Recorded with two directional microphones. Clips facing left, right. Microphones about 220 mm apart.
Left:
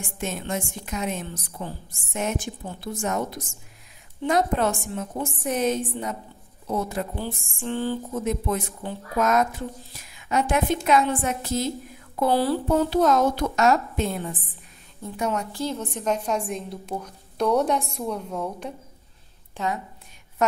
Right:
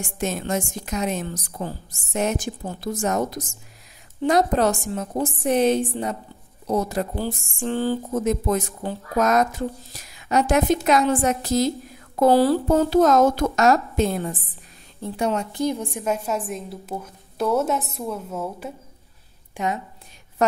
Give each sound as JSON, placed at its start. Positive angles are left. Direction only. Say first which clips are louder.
{"t": 0.2, "sound": "a woman's voice", "louder": "right 4 dB", "side_deg": -40}
{"t": 6.7, "sound": "speech", "louder": "right 4 dB", "side_deg": -40}
{"t": 12.2, "sound": "a woman's voice", "louder": "right 5 dB", "side_deg": -40}
{"t": 15.5, "sound": "a woman's voice", "louder": "right 4 dB", "side_deg": -15}
{"t": 19.5, "sound": "a woman's voice", "louder": "right 2 dB", "side_deg": -15}